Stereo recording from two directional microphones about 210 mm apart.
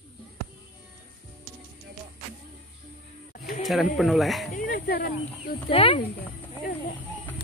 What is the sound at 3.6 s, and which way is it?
Speech, centre (ahead or behind).